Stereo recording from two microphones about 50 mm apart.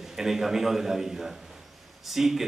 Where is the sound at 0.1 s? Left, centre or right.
Centre.